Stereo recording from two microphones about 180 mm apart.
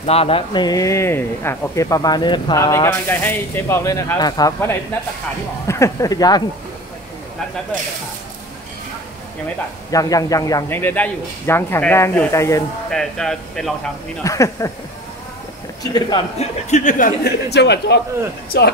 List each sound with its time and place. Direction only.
0.0 s speech: 35° left (ahead or behind)
9.8 s speech: 20° left (ahead or behind)
12.9 s speech: 5° left (ahead or behind)
14.2 s speech: 15° left (ahead or behind)
15.8 s speech: 20° left (ahead or behind)
16.3 s speech: 40° left (ahead or behind)
17.2 s a man's voice: 70° left (ahead or behind)